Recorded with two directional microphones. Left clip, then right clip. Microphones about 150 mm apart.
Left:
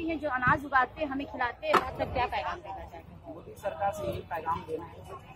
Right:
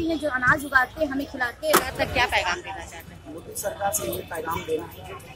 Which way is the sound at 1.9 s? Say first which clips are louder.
Right 8 dB; 10° right (ahead or behind).